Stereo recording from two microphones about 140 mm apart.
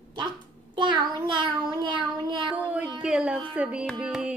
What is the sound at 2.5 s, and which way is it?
Speech, 10° right (ahead or behind).